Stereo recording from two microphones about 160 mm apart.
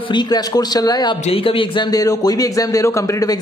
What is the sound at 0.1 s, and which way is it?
Speech, 25° left (ahead or behind).